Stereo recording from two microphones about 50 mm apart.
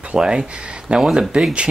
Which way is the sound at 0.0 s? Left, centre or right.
Centre.